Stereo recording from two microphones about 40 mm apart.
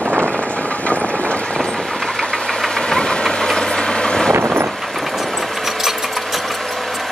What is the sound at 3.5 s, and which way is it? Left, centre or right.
Vehicle, centre.